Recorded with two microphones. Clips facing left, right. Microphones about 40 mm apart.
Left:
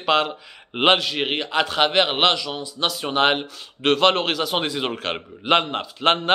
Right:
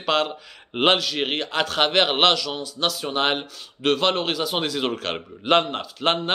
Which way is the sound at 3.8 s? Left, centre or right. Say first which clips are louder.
Left 3 dB; left.